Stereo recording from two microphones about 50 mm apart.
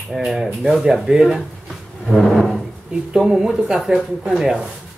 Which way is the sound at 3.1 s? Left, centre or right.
Centre.